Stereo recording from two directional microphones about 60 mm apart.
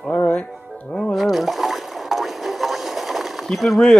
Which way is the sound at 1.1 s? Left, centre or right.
Centre.